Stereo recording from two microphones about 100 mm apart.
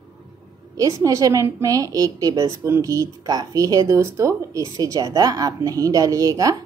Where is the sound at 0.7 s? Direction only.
35° right (ahead or behind).